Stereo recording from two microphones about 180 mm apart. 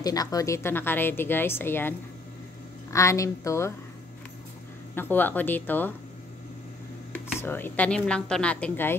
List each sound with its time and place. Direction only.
0.0 s a woman's voice: 20° left (ahead or behind)
4.9 s a woman's voice: 10° left (ahead or behind)
7.3 s a woman's voice: 10° left (ahead or behind)